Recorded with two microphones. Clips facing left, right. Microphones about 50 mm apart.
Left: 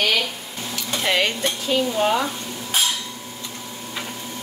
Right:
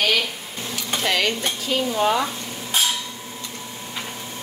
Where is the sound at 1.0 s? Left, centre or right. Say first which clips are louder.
Left 1 dB; left.